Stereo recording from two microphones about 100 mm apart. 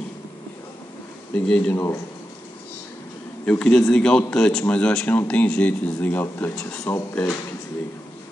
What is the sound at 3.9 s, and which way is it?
Speech, 10° left (ahead or behind).